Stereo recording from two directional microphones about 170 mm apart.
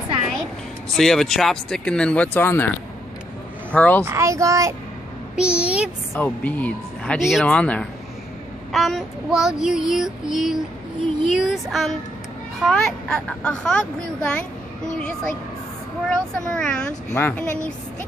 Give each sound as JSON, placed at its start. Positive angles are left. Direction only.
{"t": 0.9, "sound": "child singing", "side_deg": 0}
{"t": 3.7, "sound": "speech", "side_deg": 10}
{"t": 4.0, "sound": "a child's voice", "side_deg": -15}
{"t": 5.3, "sound": "a child's voice", "side_deg": -5}
{"t": 6.1, "sound": "speech", "side_deg": 10}
{"t": 8.7, "sound": "child singing", "side_deg": 0}
{"t": 16.1, "sound": "child singing", "side_deg": 5}
{"t": 17.1, "sound": "speech", "side_deg": 10}